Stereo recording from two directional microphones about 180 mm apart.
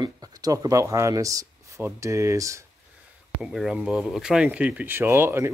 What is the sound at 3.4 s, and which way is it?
Speech, centre (ahead or behind).